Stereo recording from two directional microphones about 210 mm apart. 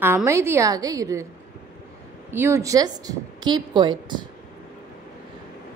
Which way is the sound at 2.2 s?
10° right (ahead or behind).